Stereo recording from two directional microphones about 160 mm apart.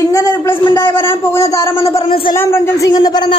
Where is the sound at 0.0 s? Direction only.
20° left (ahead or behind).